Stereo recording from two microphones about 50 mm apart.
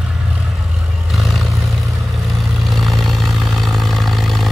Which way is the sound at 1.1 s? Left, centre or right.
Centre.